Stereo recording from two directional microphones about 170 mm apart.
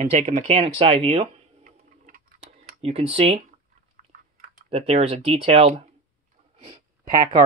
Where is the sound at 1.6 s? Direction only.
55° right (ahead or behind).